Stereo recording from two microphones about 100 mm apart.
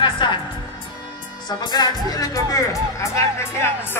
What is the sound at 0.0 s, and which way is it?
Music, 50° left (ahead or behind).